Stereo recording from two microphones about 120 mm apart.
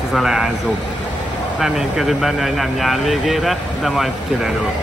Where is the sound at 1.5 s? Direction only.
5° right (ahead or behind).